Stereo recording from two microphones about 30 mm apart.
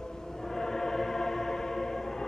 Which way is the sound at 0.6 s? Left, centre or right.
Centre.